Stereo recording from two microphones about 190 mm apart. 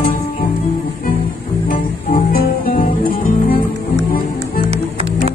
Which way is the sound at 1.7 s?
50° left (ahead or behind).